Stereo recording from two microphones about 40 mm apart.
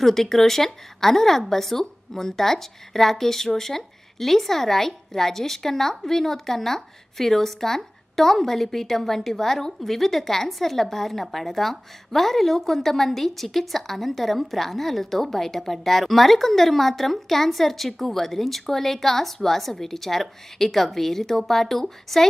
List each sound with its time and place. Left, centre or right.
0.0 s speech: centre